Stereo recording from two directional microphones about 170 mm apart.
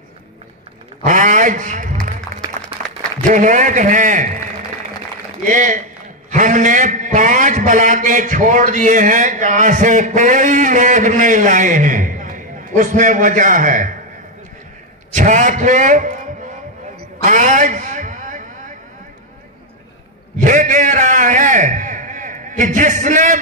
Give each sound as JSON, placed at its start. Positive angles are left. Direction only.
{"t": 1.0, "sound": "a man's voice", "side_deg": -50}
{"t": 3.3, "sound": "a man's voice", "side_deg": -45}
{"t": 5.4, "sound": "a man's voice", "side_deg": -50}
{"t": 15.1, "sound": "a man's voice", "side_deg": -45}
{"t": 17.2, "sound": "a sound", "side_deg": -45}
{"t": 20.4, "sound": "a man's voice", "side_deg": -50}